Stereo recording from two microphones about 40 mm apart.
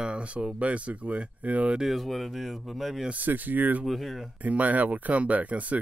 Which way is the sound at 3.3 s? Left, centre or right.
Right.